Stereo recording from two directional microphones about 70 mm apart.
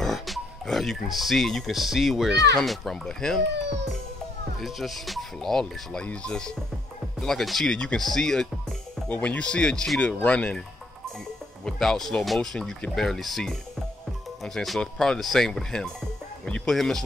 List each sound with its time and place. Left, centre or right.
0.0 s speech: centre
4.6 s speech: centre
9.1 s speech: left
11.6 s speech: centre
16.4 s music: centre
16.7 s speech: centre